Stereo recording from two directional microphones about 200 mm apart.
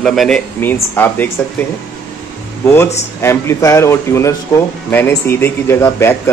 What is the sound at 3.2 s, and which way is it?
Speech, 15° left (ahead or behind).